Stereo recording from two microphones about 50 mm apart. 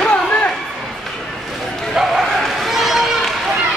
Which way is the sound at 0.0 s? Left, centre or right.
Left.